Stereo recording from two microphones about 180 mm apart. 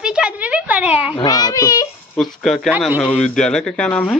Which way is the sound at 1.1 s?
25° left (ahead or behind).